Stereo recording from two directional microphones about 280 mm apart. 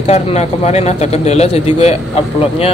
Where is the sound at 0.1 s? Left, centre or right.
Left.